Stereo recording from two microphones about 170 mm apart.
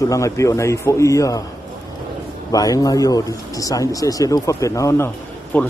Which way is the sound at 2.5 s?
20° left (ahead or behind).